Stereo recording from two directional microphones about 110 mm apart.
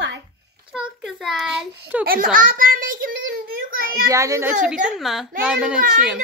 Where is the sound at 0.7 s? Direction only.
5° right (ahead or behind).